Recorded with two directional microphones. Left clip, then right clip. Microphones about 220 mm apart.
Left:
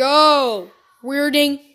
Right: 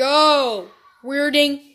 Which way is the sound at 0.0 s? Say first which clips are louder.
Left 2 dB; 35° left (ahead or behind).